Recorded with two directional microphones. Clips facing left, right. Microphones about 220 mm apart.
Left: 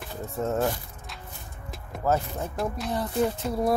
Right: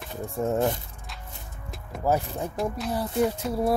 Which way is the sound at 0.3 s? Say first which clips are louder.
Right 2 dB; 15° right (ahead or behind).